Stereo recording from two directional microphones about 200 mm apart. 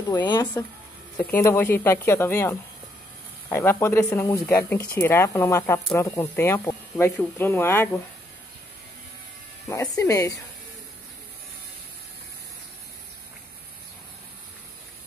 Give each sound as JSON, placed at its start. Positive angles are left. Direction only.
{"t": 0.1, "sound": "speech", "side_deg": 20}
{"t": 9.7, "sound": "speech", "side_deg": 15}